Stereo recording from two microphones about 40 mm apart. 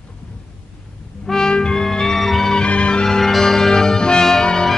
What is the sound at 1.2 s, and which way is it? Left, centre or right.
Music, centre.